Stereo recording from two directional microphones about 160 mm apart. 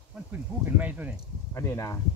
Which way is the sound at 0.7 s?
10° right (ahead or behind).